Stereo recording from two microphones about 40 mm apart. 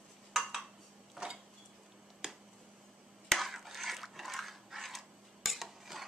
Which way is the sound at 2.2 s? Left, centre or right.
Centre.